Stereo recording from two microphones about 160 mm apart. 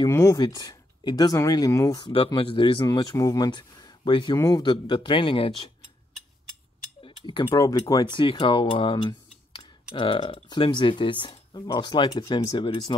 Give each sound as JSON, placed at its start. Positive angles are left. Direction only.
{"t": 0.1, "sound": "speech", "side_deg": 20}
{"t": 7.0, "sound": "a sound", "side_deg": 30}
{"t": 7.4, "sound": "speech", "side_deg": 20}